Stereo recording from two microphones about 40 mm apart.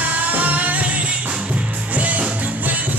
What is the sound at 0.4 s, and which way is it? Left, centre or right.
Music, right.